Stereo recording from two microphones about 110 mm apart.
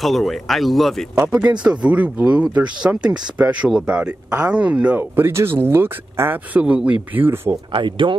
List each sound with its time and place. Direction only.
0.0 s speech: centre (ahead or behind)
1.2 s speech: 10° right (ahead or behind)
7.7 s speech: 50° right (ahead or behind)